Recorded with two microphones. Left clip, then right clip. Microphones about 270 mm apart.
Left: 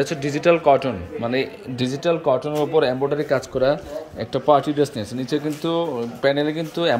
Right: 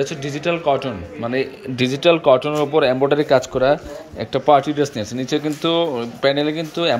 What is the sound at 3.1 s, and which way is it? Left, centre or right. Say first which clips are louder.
Speech: right 6 dB; centre.